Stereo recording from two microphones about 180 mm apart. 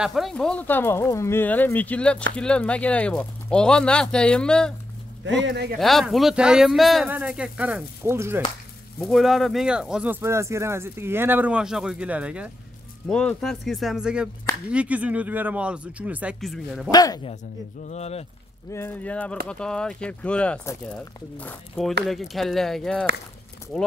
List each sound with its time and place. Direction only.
0.0 s speech: centre (ahead or behind)
5.2 s speech: 90° right; by 5.8 s 70° right (ahead or behind)
5.8 s speech: centre (ahead or behind)
9.0 s speech: centre (ahead or behind)
10.2 s speech: 15° right (ahead or behind)
13.1 s speech: 5° left (ahead or behind)
16.9 s speech: 20° left (ahead or behind)
17.8 s speech: 35° left (ahead or behind)
18.7 s speech: 15° left (ahead or behind)